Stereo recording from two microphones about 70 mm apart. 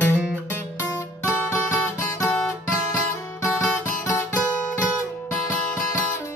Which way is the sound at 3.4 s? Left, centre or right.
Left.